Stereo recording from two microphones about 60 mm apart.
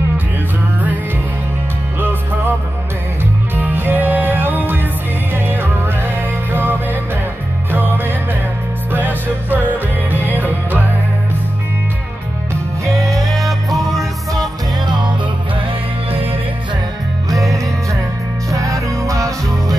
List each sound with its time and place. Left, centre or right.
2.0 s music: right
3.5 s music: right
13.1 s music: centre
13.9 s music: right
17.3 s music: right